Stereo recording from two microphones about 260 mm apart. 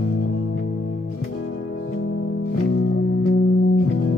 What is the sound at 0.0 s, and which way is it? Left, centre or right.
Music, left.